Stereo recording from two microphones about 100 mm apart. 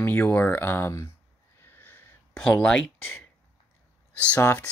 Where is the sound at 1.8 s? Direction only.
20° left (ahead or behind).